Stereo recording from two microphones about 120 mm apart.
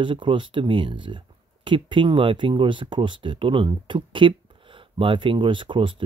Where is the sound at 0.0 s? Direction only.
45° right (ahead or behind).